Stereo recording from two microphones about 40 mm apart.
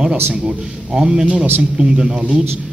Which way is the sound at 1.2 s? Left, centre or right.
Right.